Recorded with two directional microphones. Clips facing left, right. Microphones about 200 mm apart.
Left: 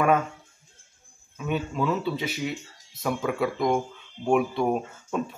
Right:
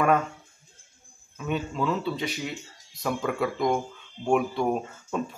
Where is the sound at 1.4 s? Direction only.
5° left (ahead or behind).